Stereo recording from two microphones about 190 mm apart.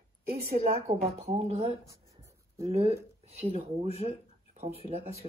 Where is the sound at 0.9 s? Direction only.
35° right (ahead or behind).